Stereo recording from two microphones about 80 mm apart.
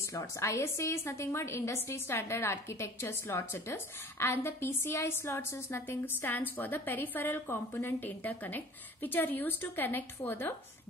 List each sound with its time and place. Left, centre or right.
0.1 s a woman's voice: left